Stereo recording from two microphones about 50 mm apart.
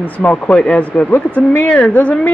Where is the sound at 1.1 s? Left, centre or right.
Left.